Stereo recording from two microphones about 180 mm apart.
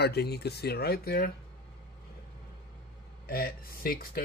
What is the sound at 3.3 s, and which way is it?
Speech, 55° left (ahead or behind).